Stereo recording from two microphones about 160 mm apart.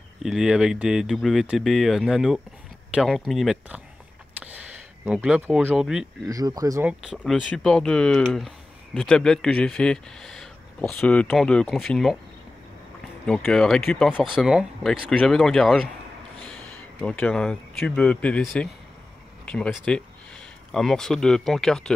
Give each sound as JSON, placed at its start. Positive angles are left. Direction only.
{"t": 0.2, "sound": "speech", "side_deg": -5}
{"t": 5.0, "sound": "speech", "side_deg": -5}
{"t": 6.2, "sound": "speech", "side_deg": -20}
{"t": 6.9, "sound": "speech", "side_deg": -5}
{"t": 13.2, "sound": "speech", "side_deg": 5}
{"t": 17.0, "sound": "speech", "side_deg": 5}